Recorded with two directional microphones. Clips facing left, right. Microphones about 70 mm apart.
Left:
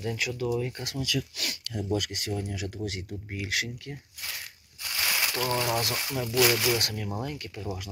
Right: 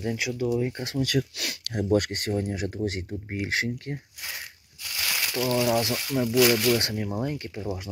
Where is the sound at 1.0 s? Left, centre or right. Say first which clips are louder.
Right 5 dB; right.